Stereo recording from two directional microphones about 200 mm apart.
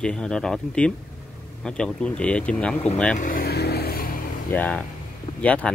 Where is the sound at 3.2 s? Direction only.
45° left (ahead or behind).